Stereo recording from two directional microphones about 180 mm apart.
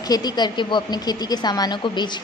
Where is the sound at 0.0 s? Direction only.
20° left (ahead or behind).